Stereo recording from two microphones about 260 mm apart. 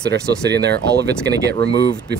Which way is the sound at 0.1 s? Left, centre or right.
Right.